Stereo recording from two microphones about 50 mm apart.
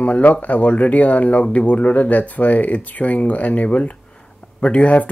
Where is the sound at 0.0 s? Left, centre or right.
Left.